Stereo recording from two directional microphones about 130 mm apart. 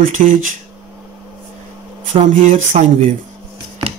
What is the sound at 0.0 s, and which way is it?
Speech, 90° right.